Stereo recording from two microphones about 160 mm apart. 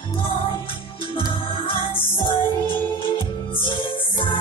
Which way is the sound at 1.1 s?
35° left (ahead or behind).